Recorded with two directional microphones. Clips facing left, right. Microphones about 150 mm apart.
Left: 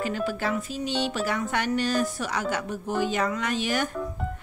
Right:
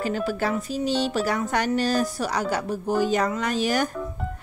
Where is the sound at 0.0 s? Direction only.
40° right (ahead or behind).